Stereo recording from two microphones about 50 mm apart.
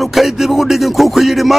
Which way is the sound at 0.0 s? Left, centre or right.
Centre.